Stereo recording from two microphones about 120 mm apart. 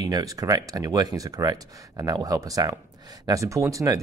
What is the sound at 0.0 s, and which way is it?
Speech, 30° right (ahead or behind).